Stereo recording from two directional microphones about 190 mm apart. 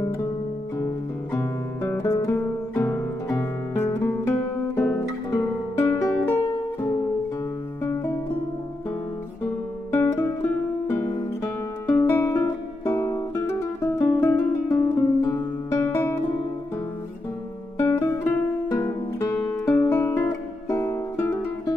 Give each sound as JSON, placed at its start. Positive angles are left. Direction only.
{"t": 1.3, "sound": "guitar", "side_deg": 15}
{"t": 2.8, "sound": "music", "side_deg": 15}
{"t": 7.8, "sound": "music", "side_deg": 10}
{"t": 11.4, "sound": "music", "side_deg": 15}
{"t": 17.7, "sound": "guitar", "side_deg": 15}